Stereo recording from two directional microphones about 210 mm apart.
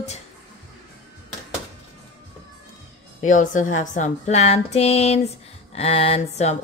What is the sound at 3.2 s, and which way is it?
A woman's voice, 35° left (ahead or behind).